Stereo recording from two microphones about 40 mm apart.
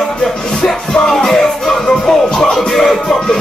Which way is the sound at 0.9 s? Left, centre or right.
Centre.